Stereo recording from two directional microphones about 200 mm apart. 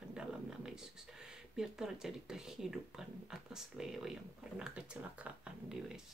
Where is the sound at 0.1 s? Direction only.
5° right (ahead or behind).